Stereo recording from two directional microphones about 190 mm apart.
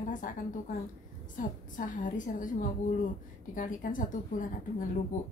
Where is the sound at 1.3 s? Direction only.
45° left (ahead or behind).